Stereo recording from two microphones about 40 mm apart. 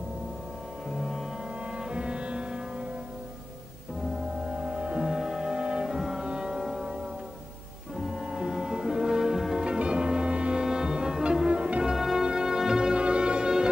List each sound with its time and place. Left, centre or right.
0.8 s music: centre
1.8 s music: right
4.0 s music: right
5.0 s music: centre
5.9 s music: centre
6.2 s music: centre
8.0 s music: centre
9.6 s music: right
10.6 s foghorn: centre
11.4 s music: right
11.8 s music: centre
12.9 s music: right